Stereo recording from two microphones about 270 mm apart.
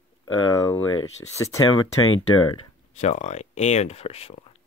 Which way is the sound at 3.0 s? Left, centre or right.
Left.